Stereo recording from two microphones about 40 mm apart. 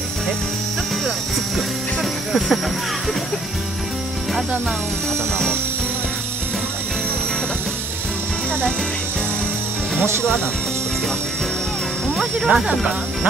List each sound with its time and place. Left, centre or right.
2.0 s music: centre
12.4 s speech: centre